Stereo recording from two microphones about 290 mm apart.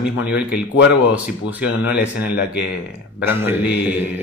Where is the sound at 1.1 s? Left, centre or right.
Centre.